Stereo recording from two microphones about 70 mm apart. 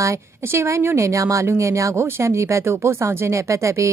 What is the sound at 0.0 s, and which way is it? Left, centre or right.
Speech, right.